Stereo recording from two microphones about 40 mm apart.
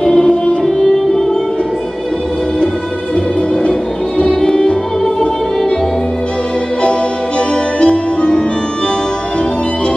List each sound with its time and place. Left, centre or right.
0.0 s music: left
4.2 s music: left
6.8 s music: left